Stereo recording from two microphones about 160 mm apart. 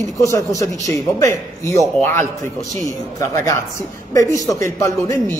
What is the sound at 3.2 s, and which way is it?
Speech, 20° left (ahead or behind).